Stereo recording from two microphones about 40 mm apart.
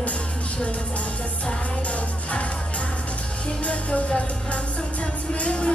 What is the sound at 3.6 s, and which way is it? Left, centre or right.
Music, left.